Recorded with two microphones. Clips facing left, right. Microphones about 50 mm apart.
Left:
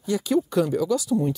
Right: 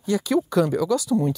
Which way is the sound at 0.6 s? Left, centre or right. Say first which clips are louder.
Right 1 dB; right.